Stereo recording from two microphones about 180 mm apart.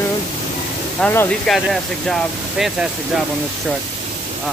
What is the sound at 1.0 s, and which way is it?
Speech, 10° left (ahead or behind).